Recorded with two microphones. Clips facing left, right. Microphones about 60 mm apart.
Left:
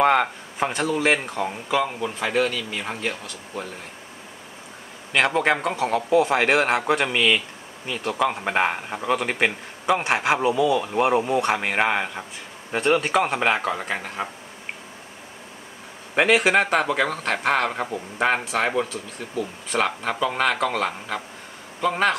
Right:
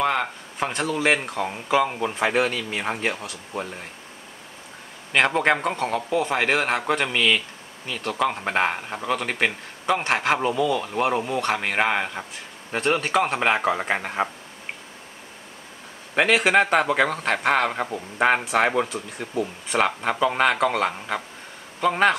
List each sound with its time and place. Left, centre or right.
0.0 s speech: centre
1.7 s speech: centre
2.1 s speech: right
2.9 s speech: right
5.1 s a man's voice: centre
13.8 s speech: right
16.2 s speech: centre